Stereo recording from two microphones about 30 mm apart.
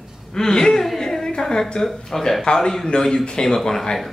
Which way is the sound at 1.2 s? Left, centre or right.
Left.